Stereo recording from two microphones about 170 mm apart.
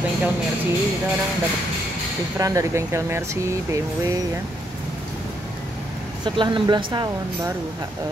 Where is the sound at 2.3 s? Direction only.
20° right (ahead or behind).